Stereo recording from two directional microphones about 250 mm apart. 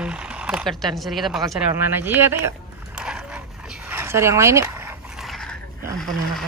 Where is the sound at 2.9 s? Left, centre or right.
Centre.